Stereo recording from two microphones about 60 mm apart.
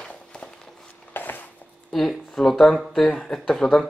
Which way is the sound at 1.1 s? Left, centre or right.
Left.